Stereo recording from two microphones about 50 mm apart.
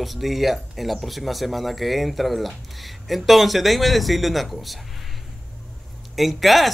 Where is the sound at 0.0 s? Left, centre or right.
Centre.